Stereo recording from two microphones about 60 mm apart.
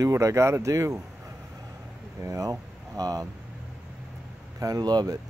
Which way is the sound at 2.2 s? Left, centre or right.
Right.